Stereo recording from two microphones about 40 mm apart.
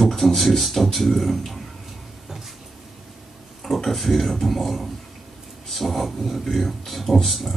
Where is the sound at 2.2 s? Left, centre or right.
Centre.